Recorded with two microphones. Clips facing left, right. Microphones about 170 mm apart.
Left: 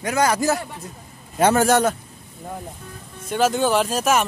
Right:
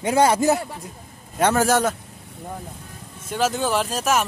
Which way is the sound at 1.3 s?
Centre (ahead or behind).